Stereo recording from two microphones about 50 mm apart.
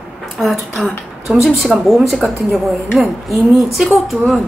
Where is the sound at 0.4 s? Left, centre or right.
Centre.